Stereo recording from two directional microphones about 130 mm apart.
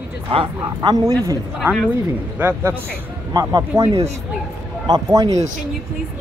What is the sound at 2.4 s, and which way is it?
Speech, 15° right (ahead or behind).